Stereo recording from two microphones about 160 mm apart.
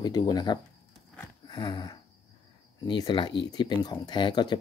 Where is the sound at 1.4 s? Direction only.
25° left (ahead or behind).